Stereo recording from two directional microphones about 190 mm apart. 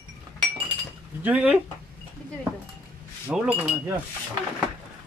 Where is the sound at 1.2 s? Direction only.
5° right (ahead or behind).